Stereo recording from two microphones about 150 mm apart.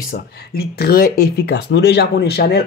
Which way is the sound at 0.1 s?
90° left.